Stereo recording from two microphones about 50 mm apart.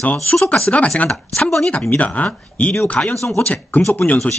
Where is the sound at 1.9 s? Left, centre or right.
Left.